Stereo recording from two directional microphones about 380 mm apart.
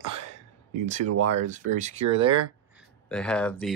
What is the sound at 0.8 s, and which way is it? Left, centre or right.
Speech, centre.